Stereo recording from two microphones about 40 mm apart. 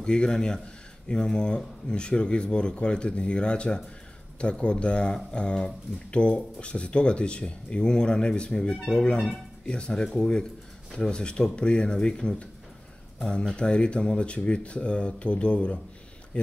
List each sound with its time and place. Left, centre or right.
0.0 s speech: left